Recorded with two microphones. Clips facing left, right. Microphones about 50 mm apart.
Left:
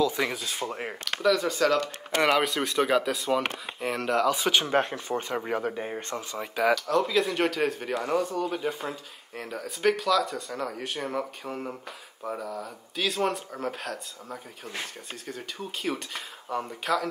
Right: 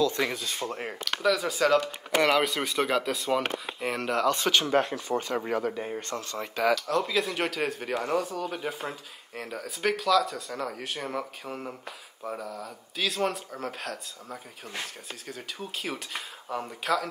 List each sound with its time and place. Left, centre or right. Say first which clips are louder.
0.0 s speech: even; centre
1.2 s speech: left 1 dB; centre
4.6 s speech: even; left
6.1 s speech: left 2 dB; centre